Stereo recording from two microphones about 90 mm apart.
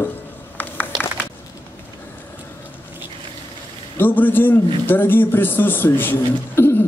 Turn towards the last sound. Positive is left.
turn(degrees=25)  # may be behind; listen again after turning